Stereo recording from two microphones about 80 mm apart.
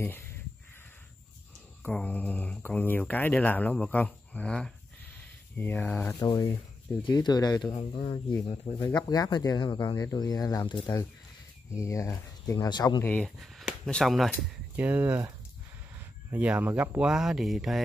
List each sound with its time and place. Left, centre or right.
1.8 s speech: centre
6.1 s speech: left
8.9 s speech: left
11.7 s speech: left
12.6 s speech: left
13.4 s a sound: centre
14.0 s speech: centre
14.8 s speech: centre
16.3 s speech: centre
17.0 s speech: centre